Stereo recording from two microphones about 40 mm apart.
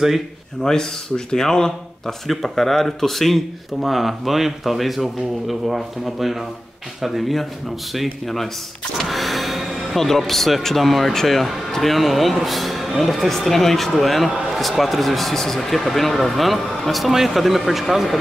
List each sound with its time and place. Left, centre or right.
0.7 s speech: centre